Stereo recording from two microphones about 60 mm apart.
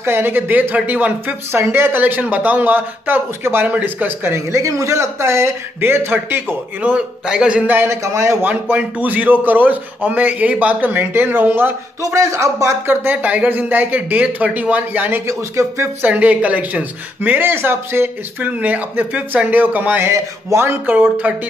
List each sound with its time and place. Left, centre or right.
0.0 s speech: right
1.5 s speech: right
4.5 s a man's voice: right
5.8 s speech: right
7.2 s speech: centre
7.6 s speech: right
7.9 s a man's voice: right
8.4 s speech: right
12.0 s a man's voice: right
12.8 s speech: right
15.2 s speech: right
16.0 s speech: right
20.0 s speech: right
20.9 s speech: right